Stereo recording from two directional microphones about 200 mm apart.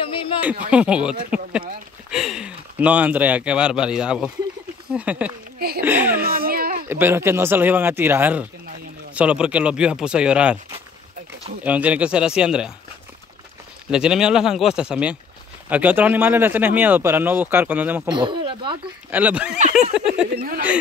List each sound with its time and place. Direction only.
0.4 s speech: 5° right (ahead or behind)
5.6 s speech: 50° right (ahead or behind)
5.9 s speech: 10° right (ahead or behind)
6.2 s baby cry: 50° right (ahead or behind)
6.9 s speech: 10° right (ahead or behind)
11.6 s speech: 5° right (ahead or behind)
13.8 s speech: 5° right (ahead or behind)
18.0 s speech: 25° right (ahead or behind)
19.0 s speech: 10° right (ahead or behind)
19.7 s a sound: 5° right (ahead or behind)
20.3 s speech: 45° right (ahead or behind)